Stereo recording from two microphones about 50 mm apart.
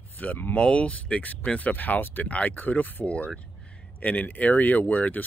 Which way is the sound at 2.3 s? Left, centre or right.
Left.